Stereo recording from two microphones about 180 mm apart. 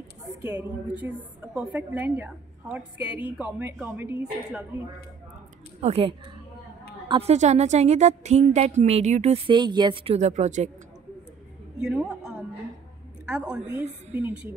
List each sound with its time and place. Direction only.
0.4 s a woman's voice: 10° right (ahead or behind)
5.8 s a woman's voice: 35° right (ahead or behind)
9.5 s a woman's voice: 25° right (ahead or behind); by 10.7 s 40° right (ahead or behind)
11.8 s a woman's voice: 5° right (ahead or behind)